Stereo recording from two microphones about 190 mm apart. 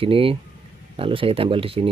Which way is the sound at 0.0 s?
30° right (ahead or behind).